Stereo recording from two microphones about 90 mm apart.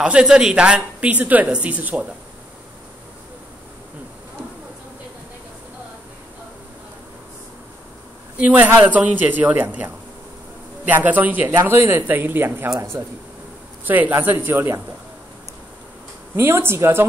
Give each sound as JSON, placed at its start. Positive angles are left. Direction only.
{"t": 0.0, "sound": "a woman's voice", "side_deg": -10}
{"t": 8.4, "sound": "a woman's voice", "side_deg": -15}
{"t": 13.8, "sound": "a man's voice", "side_deg": -20}
{"t": 16.3, "sound": "a man's voice", "side_deg": -25}